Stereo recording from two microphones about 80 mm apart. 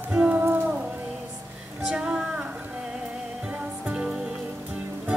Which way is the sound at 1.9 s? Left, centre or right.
Centre.